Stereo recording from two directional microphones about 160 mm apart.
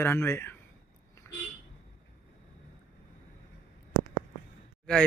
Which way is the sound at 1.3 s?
10° left (ahead or behind).